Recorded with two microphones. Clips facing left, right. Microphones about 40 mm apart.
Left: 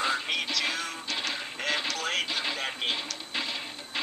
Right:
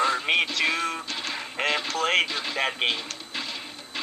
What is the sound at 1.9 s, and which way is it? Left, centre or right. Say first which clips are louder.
Radio: right 7 dB; right.